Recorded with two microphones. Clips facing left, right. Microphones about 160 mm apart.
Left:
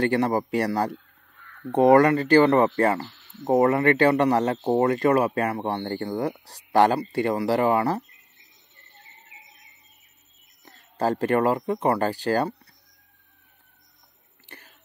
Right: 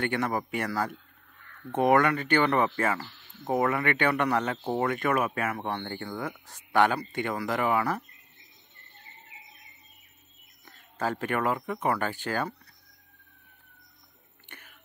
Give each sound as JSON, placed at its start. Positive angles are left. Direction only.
{"t": 0.0, "sound": "speech", "side_deg": 35}
{"t": 10.6, "sound": "speech", "side_deg": 40}
{"t": 14.5, "sound": "chewing", "side_deg": 30}